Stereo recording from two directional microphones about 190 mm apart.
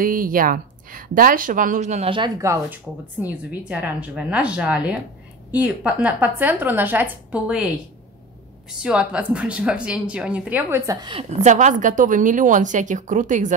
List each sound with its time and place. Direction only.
0.0 s a woman's voice: 45° right (ahead or behind); by 7.6 s 5° right (ahead or behind)
8.6 s speech: 5° right (ahead or behind); by 13.6 s 40° right (ahead or behind)